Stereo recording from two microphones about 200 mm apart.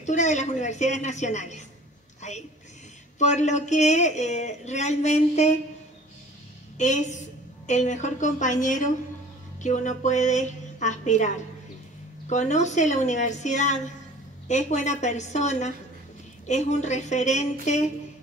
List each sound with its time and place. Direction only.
0.0 s speech: 35° left (ahead or behind)
2.2 s a sound: 35° left (ahead or behind)
3.2 s speech: 35° left (ahead or behind)
6.8 s speech: 35° left (ahead or behind)